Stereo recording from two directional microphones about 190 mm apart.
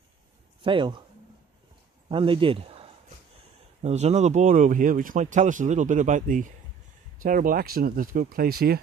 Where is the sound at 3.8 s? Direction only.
35° right (ahead or behind).